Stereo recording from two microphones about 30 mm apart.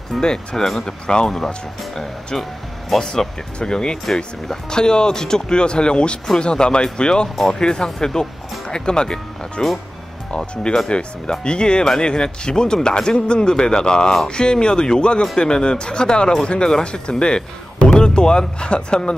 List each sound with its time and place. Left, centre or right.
0.1 s speech: centre
1.0 s speech: left
3.0 s speech: centre
3.5 s speech: left
4.0 s speech: centre
4.6 s speech: left
17.9 s music: left
18.6 s speech: left